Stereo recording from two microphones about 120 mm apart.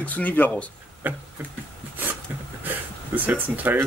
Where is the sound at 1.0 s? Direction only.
15° right (ahead or behind).